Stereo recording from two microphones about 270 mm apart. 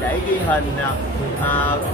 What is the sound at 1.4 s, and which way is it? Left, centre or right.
Speech, centre.